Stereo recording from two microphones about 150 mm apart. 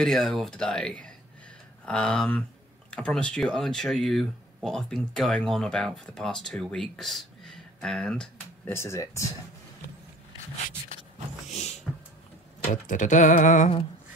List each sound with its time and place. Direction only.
0.0 s speech: 5° left (ahead or behind)
8.7 s speech: 20° left (ahead or behind)
12.8 s a sound: 55° left (ahead or behind)